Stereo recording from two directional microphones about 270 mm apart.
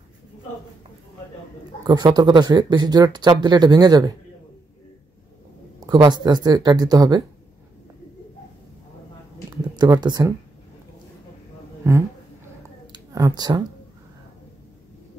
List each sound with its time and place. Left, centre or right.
1.9 s speech: centre
5.8 s speech: centre
9.8 s speech: centre
12.9 s speech: centre